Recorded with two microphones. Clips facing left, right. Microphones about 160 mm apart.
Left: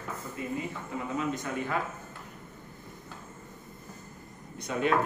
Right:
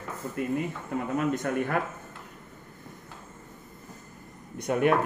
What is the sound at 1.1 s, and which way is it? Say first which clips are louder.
Speech: right 5 dB; 55° right (ahead or behind).